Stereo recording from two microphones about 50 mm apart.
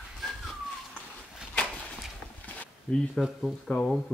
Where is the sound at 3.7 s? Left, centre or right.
Left.